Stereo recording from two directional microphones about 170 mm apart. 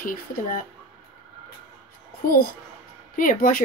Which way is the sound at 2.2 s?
55° left (ahead or behind).